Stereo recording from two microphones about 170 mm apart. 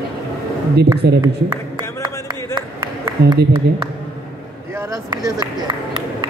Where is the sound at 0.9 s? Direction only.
75° right (ahead or behind).